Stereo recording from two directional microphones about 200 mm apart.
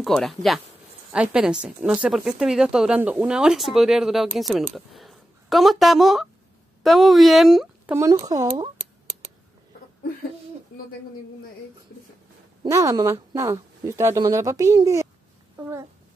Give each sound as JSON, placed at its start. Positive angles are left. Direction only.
{"t": 0.0, "sound": "speech", "side_deg": 0}
{"t": 7.9, "sound": "speech", "side_deg": -15}
{"t": 12.6, "sound": "speech", "side_deg": -15}